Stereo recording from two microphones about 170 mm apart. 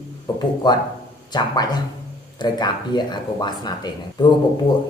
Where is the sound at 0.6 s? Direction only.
25° left (ahead or behind).